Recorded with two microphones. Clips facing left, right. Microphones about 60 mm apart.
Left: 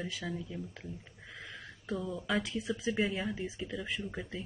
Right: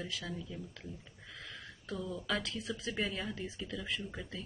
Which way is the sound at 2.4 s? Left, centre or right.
Centre.